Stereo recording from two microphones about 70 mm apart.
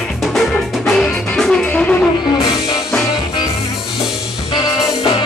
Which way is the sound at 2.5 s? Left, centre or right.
Left.